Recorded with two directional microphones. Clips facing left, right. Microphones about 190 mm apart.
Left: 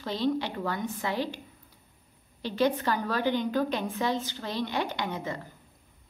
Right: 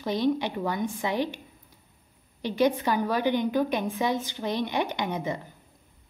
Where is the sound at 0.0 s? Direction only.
15° right (ahead or behind).